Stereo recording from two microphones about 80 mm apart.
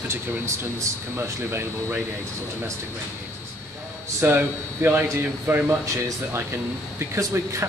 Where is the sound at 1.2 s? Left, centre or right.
Right.